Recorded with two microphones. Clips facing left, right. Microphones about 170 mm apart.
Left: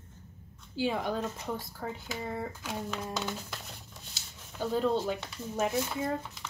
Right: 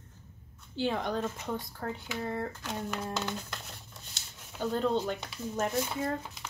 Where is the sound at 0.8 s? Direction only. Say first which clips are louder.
Even; 5° left (ahead or behind).